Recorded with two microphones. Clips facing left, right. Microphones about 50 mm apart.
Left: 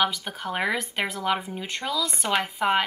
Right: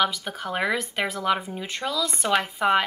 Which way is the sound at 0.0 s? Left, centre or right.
Centre.